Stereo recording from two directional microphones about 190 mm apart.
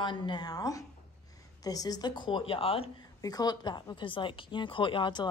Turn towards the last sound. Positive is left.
turn(degrees=25)  # may be behind; listen again after turning